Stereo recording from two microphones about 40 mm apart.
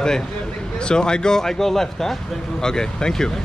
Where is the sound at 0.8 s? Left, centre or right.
Left.